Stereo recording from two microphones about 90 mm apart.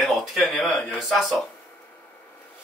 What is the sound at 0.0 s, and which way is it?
Speech, centre (ahead or behind).